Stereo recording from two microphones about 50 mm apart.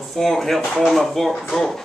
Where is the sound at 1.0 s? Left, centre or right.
Centre.